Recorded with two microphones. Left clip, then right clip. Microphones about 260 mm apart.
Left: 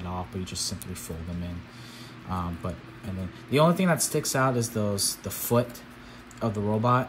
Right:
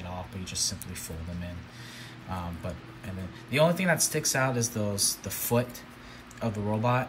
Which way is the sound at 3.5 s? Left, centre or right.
Centre.